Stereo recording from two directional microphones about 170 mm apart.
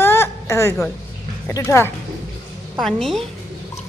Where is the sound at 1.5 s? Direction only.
15° left (ahead or behind).